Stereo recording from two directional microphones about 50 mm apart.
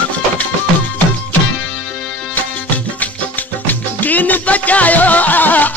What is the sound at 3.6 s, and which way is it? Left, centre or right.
Music, left.